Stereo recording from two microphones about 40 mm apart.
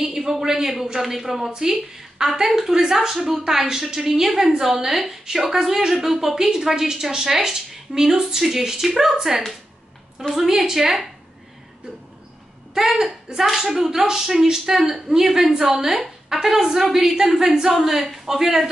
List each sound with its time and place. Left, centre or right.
0.0 s a woman's voice: centre
12.9 s a woman's voice: centre